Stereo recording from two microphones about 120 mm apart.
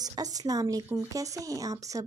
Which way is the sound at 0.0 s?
30° right (ahead or behind).